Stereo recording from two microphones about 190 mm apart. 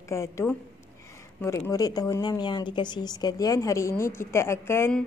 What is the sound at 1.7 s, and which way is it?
Speech, 20° left (ahead or behind).